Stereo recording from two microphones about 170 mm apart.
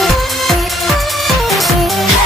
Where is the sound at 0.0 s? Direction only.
Centre (ahead or behind).